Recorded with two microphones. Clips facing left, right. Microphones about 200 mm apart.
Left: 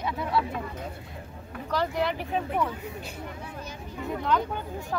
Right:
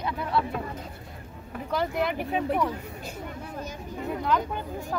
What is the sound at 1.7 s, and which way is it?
Speech, 10° right (ahead or behind).